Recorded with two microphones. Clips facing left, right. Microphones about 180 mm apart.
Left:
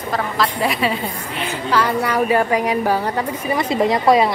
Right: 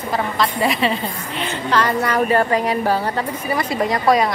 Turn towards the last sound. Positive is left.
turn(degrees=20)  # may be behind; listen again after turning